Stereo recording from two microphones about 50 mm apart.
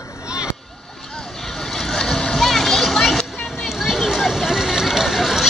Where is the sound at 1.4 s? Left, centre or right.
Centre.